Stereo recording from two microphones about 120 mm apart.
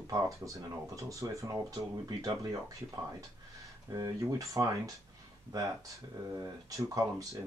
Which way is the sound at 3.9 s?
30° right (ahead or behind).